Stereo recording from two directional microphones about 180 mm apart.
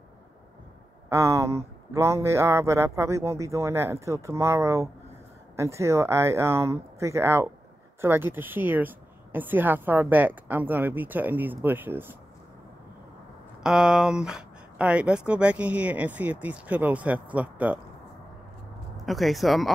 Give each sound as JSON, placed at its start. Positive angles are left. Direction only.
{"t": 1.0, "sound": "a woman's voice", "side_deg": -15}
{"t": 13.6, "sound": "a woman's voice", "side_deg": -5}
{"t": 19.0, "sound": "speech", "side_deg": 0}